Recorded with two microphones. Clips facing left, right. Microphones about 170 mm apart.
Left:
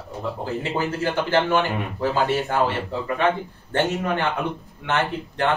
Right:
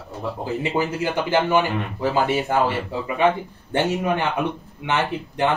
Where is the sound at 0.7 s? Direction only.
15° right (ahead or behind).